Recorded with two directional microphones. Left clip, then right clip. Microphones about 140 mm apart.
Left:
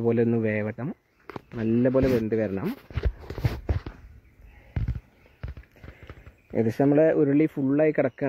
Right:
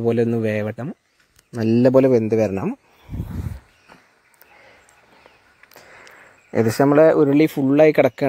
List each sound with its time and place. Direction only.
0.0 s speech: 25° right (ahead or behind)
1.6 s speech: 60° right (ahead or behind)
2.2 s speech: 40° right (ahead or behind)
6.6 s speech: 5° right (ahead or behind)
7.3 s speech: 35° right (ahead or behind)